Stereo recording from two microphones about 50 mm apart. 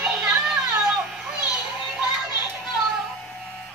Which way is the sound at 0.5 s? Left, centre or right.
Centre.